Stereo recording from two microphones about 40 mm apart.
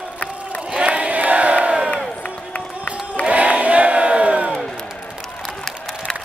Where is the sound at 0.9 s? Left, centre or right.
Right.